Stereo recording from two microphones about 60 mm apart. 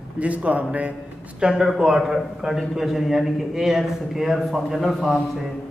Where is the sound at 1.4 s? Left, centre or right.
Centre.